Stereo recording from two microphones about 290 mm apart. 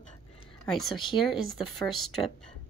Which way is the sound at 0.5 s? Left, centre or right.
Centre.